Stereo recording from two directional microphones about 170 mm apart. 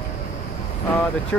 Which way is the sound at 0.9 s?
10° left (ahead or behind).